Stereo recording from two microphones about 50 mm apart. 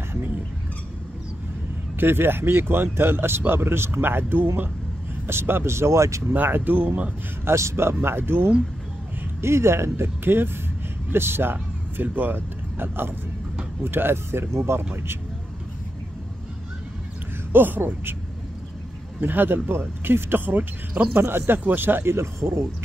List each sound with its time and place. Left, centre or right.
2.0 s speech: right
6.3 s speech: right
7.4 s speech: right
9.4 s speech: right
17.5 s speech: right
19.1 s speech: right
21.2 s speech: right